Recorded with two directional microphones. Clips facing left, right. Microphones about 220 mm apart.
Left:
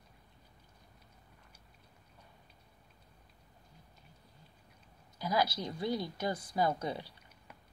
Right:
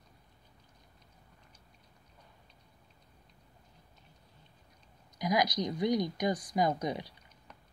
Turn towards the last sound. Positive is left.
turn(degrees=-15)  # may be behind; listen again after turning